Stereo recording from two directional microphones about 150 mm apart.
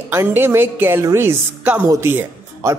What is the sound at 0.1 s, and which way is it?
Speech, 15° right (ahead or behind).